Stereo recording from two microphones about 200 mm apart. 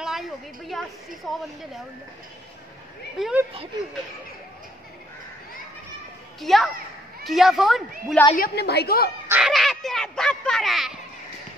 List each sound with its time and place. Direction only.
0.0 s a sound: centre (ahead or behind)
3.2 s speech: 5° right (ahead or behind)
6.4 s speech: centre (ahead or behind)
8.4 s a woman's voice: 55° left (ahead or behind)
9.3 s speech: 5° right (ahead or behind)